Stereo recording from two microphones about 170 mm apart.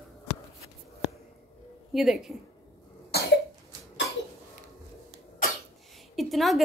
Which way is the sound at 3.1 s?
70° left (ahead or behind).